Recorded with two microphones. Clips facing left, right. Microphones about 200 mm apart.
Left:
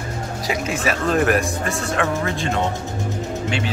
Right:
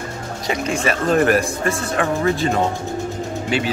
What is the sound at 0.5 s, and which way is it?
A man's voice, 5° left (ahead or behind).